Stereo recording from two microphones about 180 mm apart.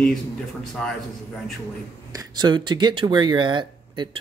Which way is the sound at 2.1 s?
25° right (ahead or behind).